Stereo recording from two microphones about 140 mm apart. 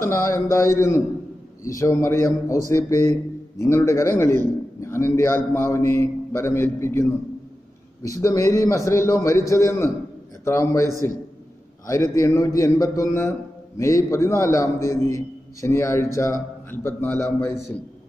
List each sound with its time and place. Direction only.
0.0 s a man's voice: 20° left (ahead or behind)
11.9 s a man's voice: 20° left (ahead or behind)